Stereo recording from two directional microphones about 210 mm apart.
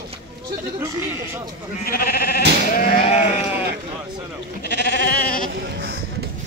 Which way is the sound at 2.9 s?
30° left (ahead or behind).